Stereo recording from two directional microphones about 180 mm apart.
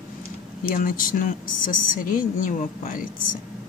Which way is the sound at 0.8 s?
50° left (ahead or behind).